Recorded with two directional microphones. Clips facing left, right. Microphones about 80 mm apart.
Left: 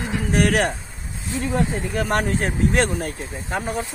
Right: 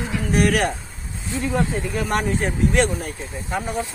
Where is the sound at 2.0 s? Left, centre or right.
Left.